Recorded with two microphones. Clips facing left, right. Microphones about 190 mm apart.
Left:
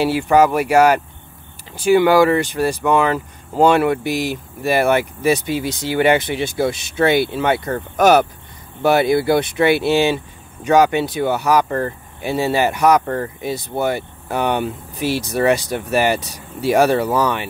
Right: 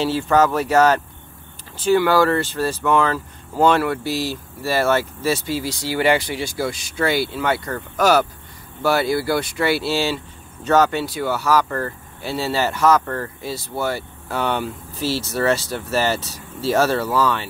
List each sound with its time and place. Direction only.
0.0 s speech: 10° left (ahead or behind)